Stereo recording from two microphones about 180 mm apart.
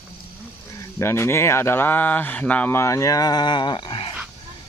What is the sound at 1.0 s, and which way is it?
Speech, 15° left (ahead or behind).